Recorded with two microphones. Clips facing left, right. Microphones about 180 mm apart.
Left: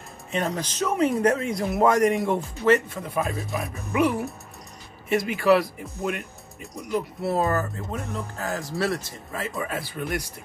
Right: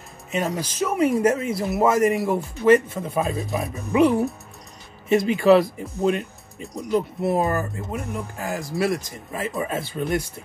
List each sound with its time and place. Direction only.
0.3 s speech: 5° right (ahead or behind)
2.5 s speech: 15° right (ahead or behind)
7.2 s speech: 20° right (ahead or behind)